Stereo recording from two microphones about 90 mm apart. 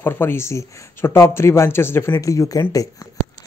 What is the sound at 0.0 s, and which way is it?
Speech, 25° left (ahead or behind).